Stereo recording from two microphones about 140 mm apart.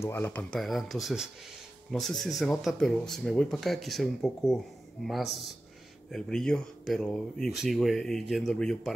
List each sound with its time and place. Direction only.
0.0 s speech: 15° left (ahead or behind)